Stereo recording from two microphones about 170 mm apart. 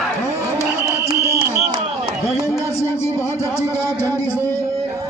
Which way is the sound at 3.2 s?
15° left (ahead or behind).